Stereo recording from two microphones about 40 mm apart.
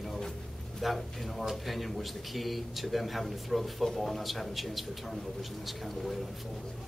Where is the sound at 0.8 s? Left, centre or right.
Centre.